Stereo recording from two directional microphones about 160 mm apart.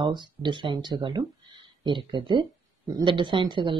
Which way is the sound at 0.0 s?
30° right (ahead or behind).